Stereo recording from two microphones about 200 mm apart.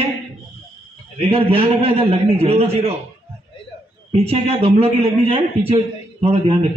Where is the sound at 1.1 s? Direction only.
30° right (ahead or behind).